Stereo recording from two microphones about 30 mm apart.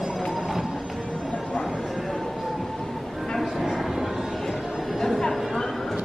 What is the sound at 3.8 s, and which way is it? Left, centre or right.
Vehicle, centre.